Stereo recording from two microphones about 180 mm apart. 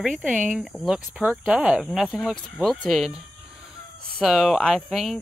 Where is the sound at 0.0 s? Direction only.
5° right (ahead or behind).